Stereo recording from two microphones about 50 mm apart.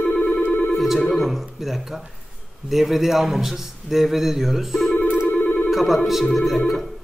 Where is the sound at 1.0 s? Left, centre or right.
Centre.